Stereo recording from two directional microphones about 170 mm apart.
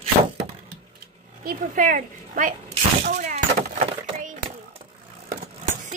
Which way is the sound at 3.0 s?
45° right (ahead or behind).